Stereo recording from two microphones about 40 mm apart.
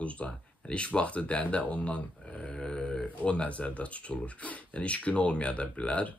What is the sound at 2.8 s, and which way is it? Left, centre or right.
Speech, left.